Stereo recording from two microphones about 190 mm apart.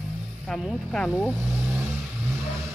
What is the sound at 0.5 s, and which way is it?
Speech, centre (ahead or behind).